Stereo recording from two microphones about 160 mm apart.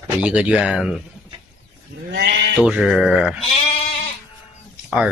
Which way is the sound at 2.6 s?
5° right (ahead or behind).